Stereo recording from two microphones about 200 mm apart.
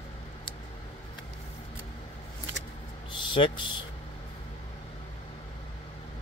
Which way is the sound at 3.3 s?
25° left (ahead or behind).